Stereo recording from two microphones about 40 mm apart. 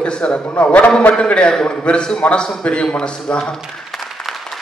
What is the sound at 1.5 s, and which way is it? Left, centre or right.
Speech, centre.